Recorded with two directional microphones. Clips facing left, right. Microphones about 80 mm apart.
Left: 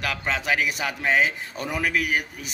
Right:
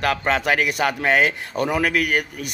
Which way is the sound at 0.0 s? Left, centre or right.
Right.